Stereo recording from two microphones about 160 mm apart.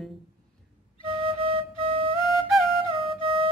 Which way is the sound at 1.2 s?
35° right (ahead or behind).